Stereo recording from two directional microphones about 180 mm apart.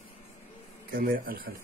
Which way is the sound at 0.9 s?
55° right (ahead or behind).